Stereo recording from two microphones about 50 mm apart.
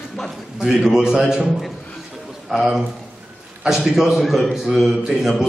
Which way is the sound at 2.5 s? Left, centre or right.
Centre.